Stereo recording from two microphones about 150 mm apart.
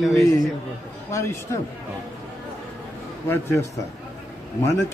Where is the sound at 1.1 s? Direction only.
20° left (ahead or behind).